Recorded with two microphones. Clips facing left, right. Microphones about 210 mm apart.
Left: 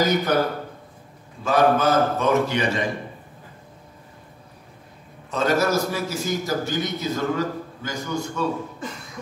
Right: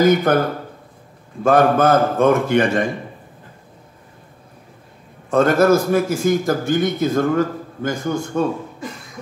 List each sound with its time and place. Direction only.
0.0 s a man's voice: 50° right (ahead or behind)
1.4 s a man's voice: 50° right (ahead or behind)
5.3 s a man's voice: 50° right (ahead or behind)